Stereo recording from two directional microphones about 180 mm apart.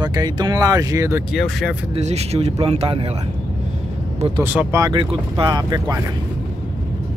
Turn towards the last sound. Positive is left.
turn(degrees=-25)  # may be behind; listen again after turning